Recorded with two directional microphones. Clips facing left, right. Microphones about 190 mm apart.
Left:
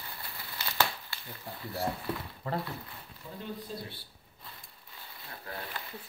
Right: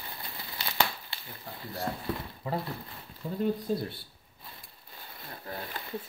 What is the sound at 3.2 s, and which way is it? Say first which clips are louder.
Speech: right 9 dB; 35° right (ahead or behind).